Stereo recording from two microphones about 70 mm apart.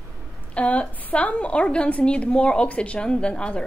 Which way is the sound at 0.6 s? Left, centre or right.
Centre.